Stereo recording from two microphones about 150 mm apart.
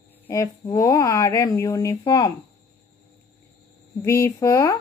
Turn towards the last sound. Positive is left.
turn(degrees=20)  # may be behind; listen again after turning